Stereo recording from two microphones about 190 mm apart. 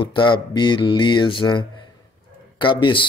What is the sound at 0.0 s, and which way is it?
Speech, 25° left (ahead or behind).